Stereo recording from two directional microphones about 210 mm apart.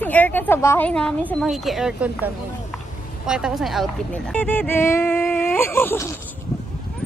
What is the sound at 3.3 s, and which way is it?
Speech, 5° right (ahead or behind).